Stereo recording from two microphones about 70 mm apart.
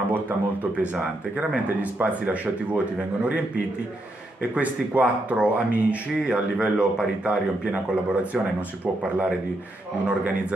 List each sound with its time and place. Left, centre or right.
0.1 s speech: right
4.4 s a man's voice: right